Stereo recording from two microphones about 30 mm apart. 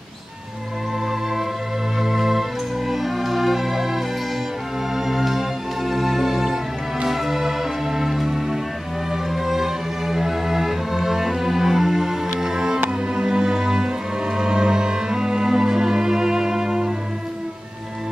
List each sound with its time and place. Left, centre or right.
2.0 s music: centre; by 16.9 s right